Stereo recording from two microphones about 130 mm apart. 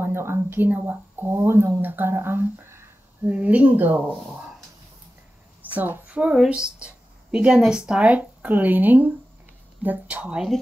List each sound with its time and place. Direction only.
0.0 s speech: 20° right (ahead or behind)
4.1 s speech: 5° right (ahead or behind)
5.8 s a woman's voice: 10° right (ahead or behind)